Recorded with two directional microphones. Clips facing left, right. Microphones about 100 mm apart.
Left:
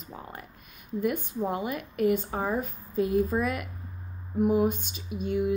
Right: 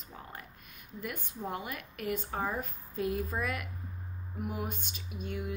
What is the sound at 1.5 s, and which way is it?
A woman's voice, 15° left (ahead or behind).